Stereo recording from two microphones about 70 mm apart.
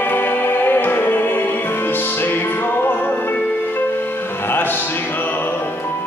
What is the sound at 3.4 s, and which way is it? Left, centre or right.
Music, centre.